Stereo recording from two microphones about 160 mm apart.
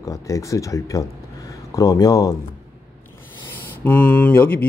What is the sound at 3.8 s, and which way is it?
Speech, 10° left (ahead or behind).